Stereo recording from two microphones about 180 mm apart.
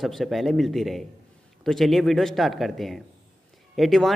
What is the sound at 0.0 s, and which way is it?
Speech, centre (ahead or behind).